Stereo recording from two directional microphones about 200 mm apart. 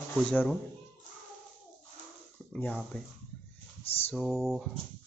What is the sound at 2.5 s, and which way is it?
Speech, 5° left (ahead or behind).